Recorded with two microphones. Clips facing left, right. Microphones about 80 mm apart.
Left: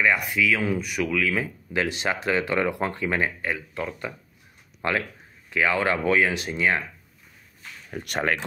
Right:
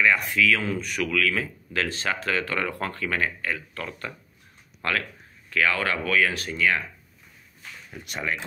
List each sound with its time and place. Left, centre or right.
0.0 s speech: centre
7.9 s speech: left